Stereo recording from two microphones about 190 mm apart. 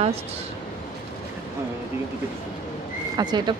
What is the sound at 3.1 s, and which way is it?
Speech, 20° right (ahead or behind).